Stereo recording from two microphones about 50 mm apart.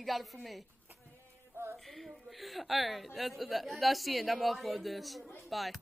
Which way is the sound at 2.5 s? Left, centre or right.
Centre.